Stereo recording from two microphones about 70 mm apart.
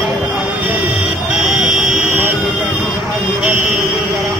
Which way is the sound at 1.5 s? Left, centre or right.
Centre.